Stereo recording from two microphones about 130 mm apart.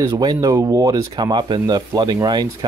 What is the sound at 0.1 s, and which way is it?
Speech, 30° right (ahead or behind).